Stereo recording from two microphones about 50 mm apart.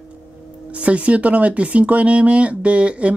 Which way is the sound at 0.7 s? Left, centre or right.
Right.